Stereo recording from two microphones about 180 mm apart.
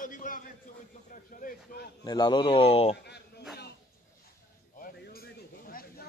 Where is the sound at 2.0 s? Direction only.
25° left (ahead or behind).